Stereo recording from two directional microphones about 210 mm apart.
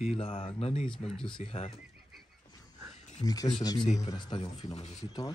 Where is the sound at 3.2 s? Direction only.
20° left (ahead or behind).